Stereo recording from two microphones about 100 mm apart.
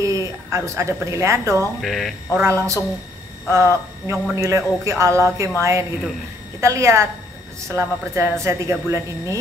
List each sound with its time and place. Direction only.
0.0 s a woman's voice: 35° right (ahead or behind)
1.8 s speech: centre (ahead or behind)
2.4 s a woman's voice: 30° right (ahead or behind)